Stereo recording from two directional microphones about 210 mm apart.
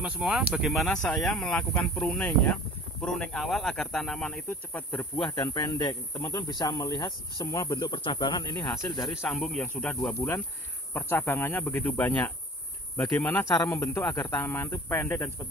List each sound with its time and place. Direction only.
0.0 s speech: 5° right (ahead or behind); by 9.3 s 15° left (ahead or behind)
9.3 s speech: 5° left (ahead or behind)